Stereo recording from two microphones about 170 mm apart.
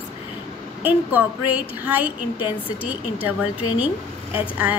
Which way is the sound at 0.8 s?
10° right (ahead or behind).